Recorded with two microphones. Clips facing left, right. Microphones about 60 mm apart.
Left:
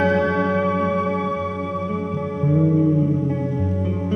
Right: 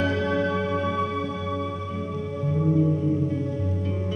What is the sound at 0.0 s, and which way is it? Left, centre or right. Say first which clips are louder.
Music: left 5 dB; left.